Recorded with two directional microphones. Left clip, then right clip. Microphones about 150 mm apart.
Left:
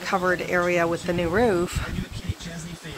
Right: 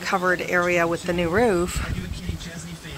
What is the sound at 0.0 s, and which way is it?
Speech, 5° right (ahead or behind).